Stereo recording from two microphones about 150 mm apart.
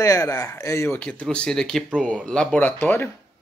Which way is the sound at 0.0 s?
25° left (ahead or behind).